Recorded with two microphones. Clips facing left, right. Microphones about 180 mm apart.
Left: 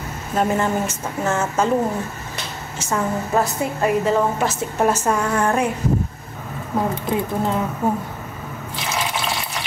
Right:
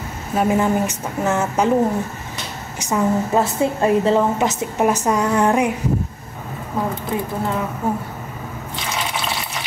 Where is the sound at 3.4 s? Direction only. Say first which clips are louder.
Right 3 dB; 25° right (ahead or behind).